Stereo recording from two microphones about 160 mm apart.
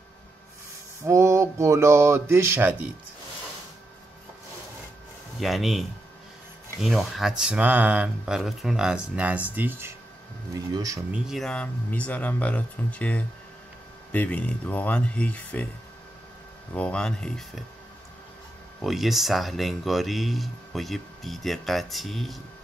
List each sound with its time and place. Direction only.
1.0 s speech: 15° right (ahead or behind)
5.4 s speech: centre (ahead or behind); by 11.1 s 20° right (ahead or behind)
11.1 s speech: centre (ahead or behind)
16.7 s speech: 5° left (ahead or behind)
18.8 s speech: centre (ahead or behind)